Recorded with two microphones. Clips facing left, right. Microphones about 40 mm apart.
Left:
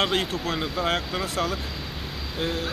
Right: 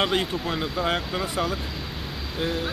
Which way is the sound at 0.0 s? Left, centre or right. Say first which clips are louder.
Even; centre.